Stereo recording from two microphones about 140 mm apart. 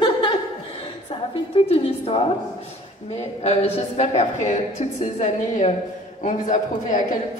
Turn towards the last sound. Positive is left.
turn(degrees=65)  # may be behind; listen again after turning